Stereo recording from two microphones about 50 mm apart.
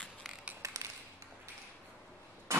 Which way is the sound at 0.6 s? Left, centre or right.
Right.